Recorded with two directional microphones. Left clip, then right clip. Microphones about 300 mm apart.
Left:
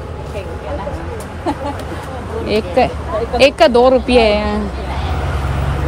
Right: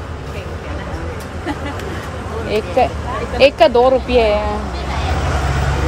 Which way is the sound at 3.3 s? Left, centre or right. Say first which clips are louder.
Left 1 dB; left.